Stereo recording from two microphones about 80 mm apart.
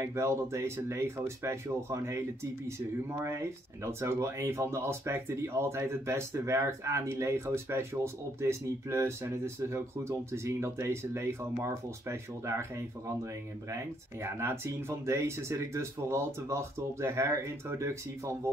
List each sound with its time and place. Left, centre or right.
0.0 s speech: right
3.8 s speech: right
14.2 s speech: right